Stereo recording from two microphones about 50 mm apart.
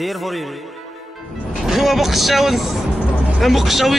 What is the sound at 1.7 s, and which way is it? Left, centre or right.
Speech, centre.